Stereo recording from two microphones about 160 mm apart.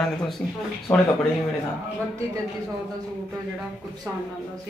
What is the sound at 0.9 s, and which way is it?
Speech, 20° left (ahead or behind).